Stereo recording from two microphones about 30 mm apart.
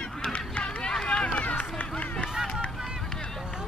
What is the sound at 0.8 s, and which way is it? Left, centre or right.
Hubbub, left.